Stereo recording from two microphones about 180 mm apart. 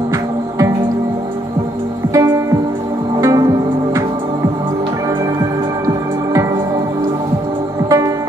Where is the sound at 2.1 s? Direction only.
20° right (ahead or behind).